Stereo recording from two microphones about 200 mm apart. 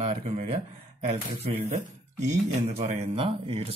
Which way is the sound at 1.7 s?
35° right (ahead or behind).